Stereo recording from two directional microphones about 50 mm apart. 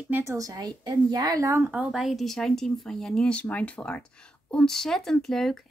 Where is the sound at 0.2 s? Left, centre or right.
Right.